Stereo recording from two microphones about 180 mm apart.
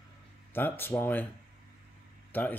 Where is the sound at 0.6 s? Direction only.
10° left (ahead or behind).